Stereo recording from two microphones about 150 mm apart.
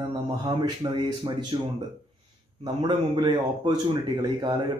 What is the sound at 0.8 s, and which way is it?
A man's voice, 30° right (ahead or behind).